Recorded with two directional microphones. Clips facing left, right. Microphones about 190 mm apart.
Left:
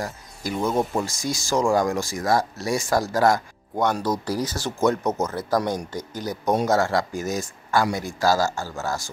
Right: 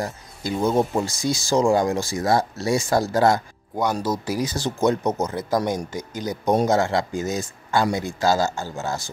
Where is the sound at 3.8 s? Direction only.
5° right (ahead or behind).